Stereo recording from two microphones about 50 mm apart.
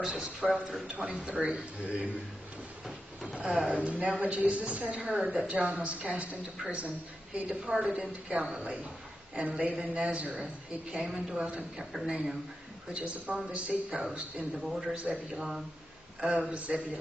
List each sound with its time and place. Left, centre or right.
0.0 s a woman's voice: centre
3.3 s a woman's voice: right
11.1 s a woman's voice: centre
12.9 s a woman's voice: right
16.3 s a woman's voice: right